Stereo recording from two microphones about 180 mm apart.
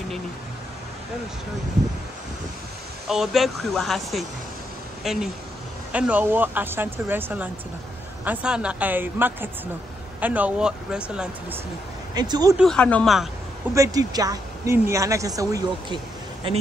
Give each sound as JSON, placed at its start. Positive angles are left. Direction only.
{"t": 3.1, "sound": "speech", "side_deg": 0}
{"t": 12.2, "sound": "a woman's voice", "side_deg": -20}
{"t": 12.5, "sound": "speech", "side_deg": 5}
{"t": 13.7, "sound": "a woman's voice", "side_deg": -20}